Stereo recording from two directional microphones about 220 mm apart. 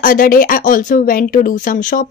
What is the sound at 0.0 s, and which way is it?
Speech, 40° left (ahead or behind).